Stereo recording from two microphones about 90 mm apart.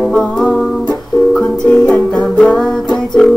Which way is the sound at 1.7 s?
5° left (ahead or behind).